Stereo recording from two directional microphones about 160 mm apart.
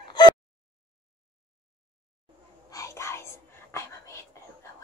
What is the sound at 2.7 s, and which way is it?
Whispering, 20° left (ahead or behind).